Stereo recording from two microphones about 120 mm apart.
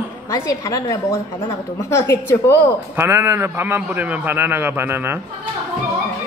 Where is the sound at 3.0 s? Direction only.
20° right (ahead or behind).